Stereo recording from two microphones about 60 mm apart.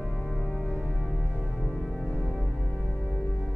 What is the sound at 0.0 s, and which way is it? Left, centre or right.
Organ, centre.